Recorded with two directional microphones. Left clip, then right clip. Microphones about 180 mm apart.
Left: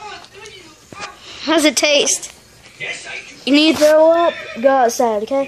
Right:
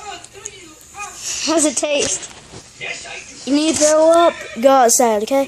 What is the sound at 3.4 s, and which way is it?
Speech, 50° left (ahead or behind).